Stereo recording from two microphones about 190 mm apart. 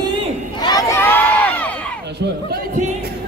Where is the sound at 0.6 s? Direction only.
15° left (ahead or behind).